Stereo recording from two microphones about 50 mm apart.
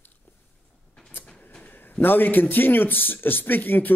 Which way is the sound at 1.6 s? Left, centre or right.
Left.